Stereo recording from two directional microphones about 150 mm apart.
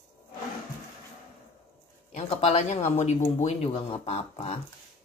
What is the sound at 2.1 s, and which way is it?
Speech, 45° left (ahead or behind).